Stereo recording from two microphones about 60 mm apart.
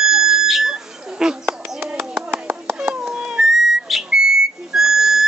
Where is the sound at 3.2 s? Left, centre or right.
Centre.